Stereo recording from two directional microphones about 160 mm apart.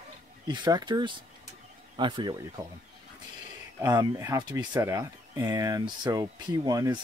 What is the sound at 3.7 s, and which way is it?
Speech, 20° right (ahead or behind).